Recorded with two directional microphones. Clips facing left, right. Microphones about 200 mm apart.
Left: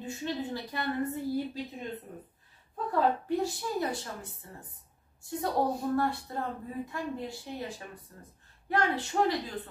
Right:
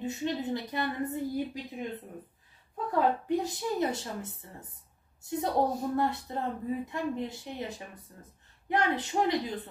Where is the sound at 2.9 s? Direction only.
20° right (ahead or behind).